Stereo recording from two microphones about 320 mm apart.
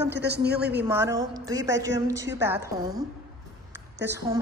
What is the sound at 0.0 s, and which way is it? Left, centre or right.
Speech, right.